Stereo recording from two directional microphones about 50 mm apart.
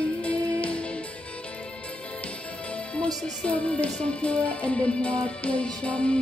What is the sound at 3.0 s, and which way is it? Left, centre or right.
Music, left.